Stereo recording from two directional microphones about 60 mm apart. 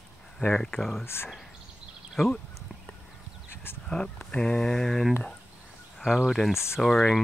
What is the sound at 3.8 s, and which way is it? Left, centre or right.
Speech, centre.